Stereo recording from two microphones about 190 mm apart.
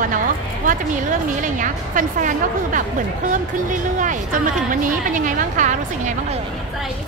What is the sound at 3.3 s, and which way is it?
A woman's voice, 40° right (ahead or behind).